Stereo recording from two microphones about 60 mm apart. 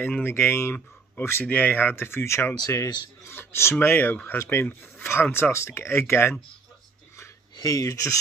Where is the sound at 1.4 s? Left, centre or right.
Left.